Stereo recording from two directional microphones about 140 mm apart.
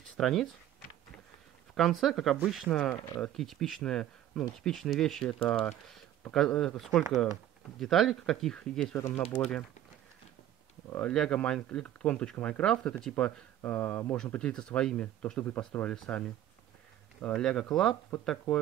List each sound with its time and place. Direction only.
0.2 s speech: centre (ahead or behind)
1.8 s speech: centre (ahead or behind)
8.9 s speech: 20° left (ahead or behind)
10.9 s speech: 10° left (ahead or behind)